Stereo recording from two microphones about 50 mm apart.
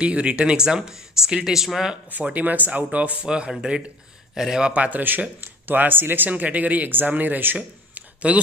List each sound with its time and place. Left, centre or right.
0.0 s speech: right
2.3 s speech: right
3.2 s speech: centre
4.7 s speech: right
7.5 s a sound: right